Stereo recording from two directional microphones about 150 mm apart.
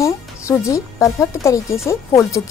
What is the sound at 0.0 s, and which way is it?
Speech, 20° left (ahead or behind).